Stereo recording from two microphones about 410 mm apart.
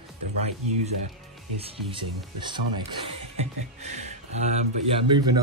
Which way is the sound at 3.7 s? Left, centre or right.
Centre.